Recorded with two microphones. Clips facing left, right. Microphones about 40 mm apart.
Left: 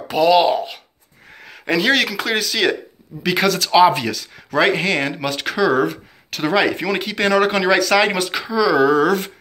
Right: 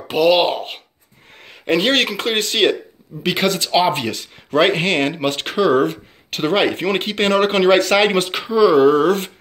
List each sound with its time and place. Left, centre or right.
0.1 s speech: right